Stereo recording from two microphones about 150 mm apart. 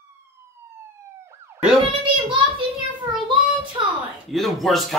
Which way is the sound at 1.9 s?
35° right (ahead or behind).